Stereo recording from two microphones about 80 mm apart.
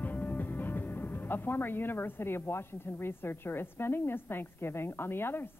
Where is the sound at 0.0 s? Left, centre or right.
Left.